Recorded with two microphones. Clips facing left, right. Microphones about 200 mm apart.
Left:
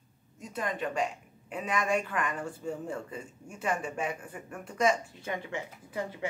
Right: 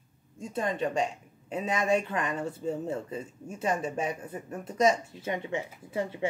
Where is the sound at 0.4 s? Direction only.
25° right (ahead or behind).